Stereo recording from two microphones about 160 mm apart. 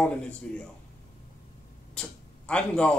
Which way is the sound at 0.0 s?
5° left (ahead or behind).